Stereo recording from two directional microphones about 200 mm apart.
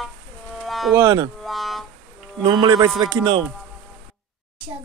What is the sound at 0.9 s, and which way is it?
Livestock, 20° right (ahead or behind).